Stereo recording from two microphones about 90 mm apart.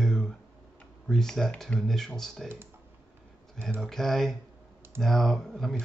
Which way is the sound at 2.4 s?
25° right (ahead or behind).